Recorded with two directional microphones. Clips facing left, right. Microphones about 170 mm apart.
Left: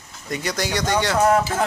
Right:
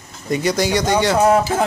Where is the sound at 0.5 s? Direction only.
10° right (ahead or behind).